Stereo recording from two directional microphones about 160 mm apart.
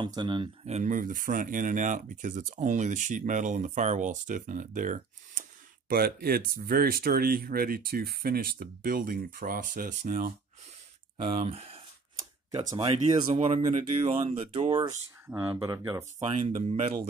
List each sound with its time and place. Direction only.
0.0 s speech: 30° right (ahead or behind)
0.7 s speech: 50° right (ahead or behind)
5.9 s speech: 65° right (ahead or behind)
11.4 s speech: 40° right (ahead or behind)
14.9 s speech: 15° right (ahead or behind)
16.3 s speech: 40° right (ahead or behind)